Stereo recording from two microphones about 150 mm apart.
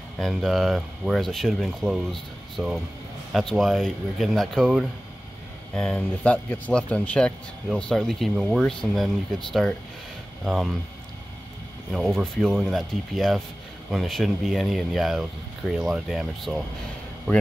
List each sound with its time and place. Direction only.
0.2 s speech: centre (ahead or behind)
12.6 s speech: centre (ahead or behind)